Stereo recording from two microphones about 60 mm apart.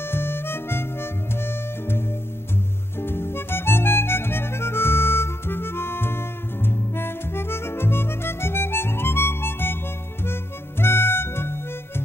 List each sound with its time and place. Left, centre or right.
0.0 s harmonica: left